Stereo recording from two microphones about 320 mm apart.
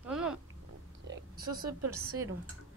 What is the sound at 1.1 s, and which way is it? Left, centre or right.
Oink, right.